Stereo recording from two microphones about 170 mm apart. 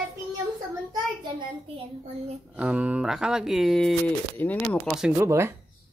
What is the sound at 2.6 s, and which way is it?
Speech, 5° right (ahead or behind).